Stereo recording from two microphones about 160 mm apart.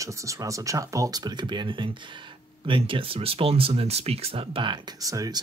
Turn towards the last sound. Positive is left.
turn(degrees=-20)  # may be behind; listen again after turning